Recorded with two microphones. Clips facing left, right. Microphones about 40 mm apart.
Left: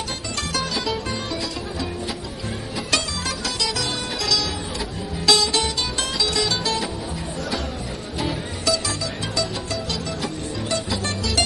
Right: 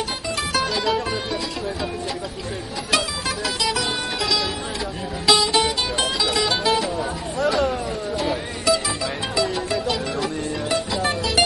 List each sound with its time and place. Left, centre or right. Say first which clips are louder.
0.5 s music: right 3 dB; centre
3.6 s music: right 3 dB; centre
8.7 s music: right 3 dB; centre
10.9 s music: right 3 dB; centre